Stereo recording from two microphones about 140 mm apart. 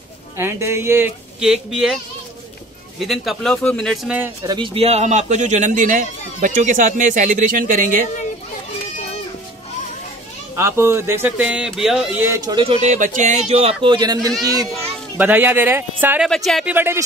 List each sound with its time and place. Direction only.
0.4 s speech: 20° right (ahead or behind)
1.4 s speech: 5° right (ahead or behind)
3.0 s speech: centre (ahead or behind)
4.5 s a man's voice: 35° right (ahead or behind); by 8.0 s 70° right (ahead or behind)
10.5 s speech: 20° right (ahead or behind); by 12.2 s 5° right (ahead or behind)
12.4 s speech: 30° right (ahead or behind)
12.6 s a man's voice: 55° right (ahead or behind)
13.8 s speech: 30° right (ahead or behind)
15.1 s speech: 10° right (ahead or behind)
16.3 s speech: centre (ahead or behind)
16.6 s speech: 15° right (ahead or behind)